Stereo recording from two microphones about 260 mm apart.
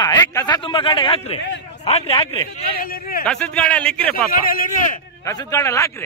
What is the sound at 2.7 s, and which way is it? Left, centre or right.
Speech, left.